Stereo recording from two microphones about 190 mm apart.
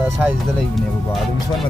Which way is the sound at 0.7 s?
Centre (ahead or behind).